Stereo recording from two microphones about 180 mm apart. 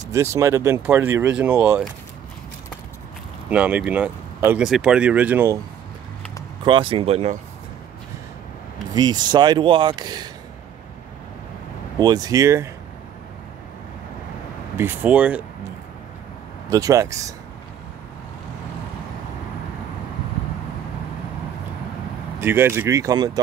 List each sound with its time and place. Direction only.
0.1 s speech: 15° right (ahead or behind)
3.4 s speech: 10° right (ahead or behind)
6.6 s speech: 30° right (ahead or behind)
8.9 s speech: 25° right (ahead or behind)
12.0 s speech: 20° right (ahead or behind)
14.8 s speech: 10° right (ahead or behind)
16.6 s speech: 20° right (ahead or behind)
22.4 s speech: 10° right (ahead or behind)